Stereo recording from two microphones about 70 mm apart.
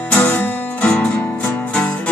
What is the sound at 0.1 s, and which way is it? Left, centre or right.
Music, left.